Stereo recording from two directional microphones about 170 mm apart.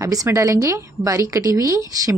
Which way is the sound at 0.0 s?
20° right (ahead or behind).